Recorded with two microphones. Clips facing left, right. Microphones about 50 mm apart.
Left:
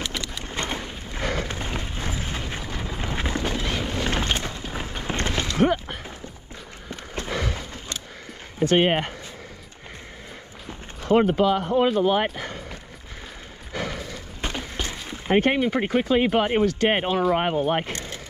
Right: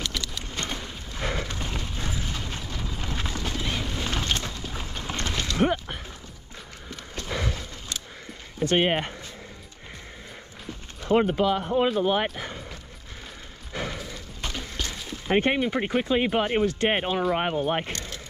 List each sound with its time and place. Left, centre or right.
0.0 s a sound: centre
8.5 s speech: left
11.1 s speech: left
11.4 s speech: left
14.4 s a sound: left
15.2 s speech: left
15.8 s speech: left
16.1 s speech: left
16.6 s speech: left